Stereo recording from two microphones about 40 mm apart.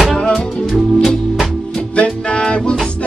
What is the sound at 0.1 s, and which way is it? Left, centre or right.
Music, centre.